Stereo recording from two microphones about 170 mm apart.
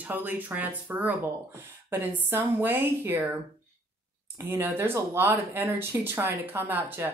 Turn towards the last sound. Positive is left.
turn(degrees=-15)  # may be behind; listen again after turning